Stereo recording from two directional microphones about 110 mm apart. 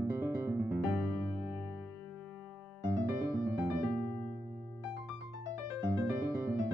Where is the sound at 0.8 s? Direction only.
Centre (ahead or behind).